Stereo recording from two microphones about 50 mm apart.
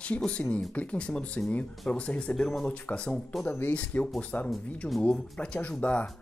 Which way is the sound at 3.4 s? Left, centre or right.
Left.